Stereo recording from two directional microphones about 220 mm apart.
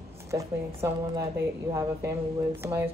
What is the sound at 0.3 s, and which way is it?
Speech, 10° right (ahead or behind).